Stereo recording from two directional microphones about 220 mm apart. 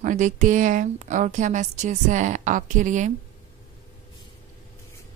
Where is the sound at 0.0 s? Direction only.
35° right (ahead or behind).